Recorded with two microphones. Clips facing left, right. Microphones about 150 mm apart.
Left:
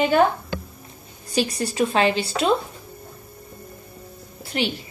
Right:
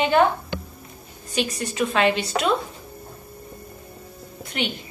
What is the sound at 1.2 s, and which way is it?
A woman's voice, 35° left (ahead or behind).